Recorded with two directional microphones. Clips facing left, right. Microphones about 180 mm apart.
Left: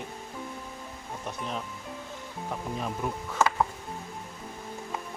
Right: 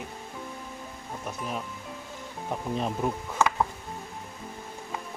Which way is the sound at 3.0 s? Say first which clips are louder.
Right 3 dB; 25° right (ahead or behind).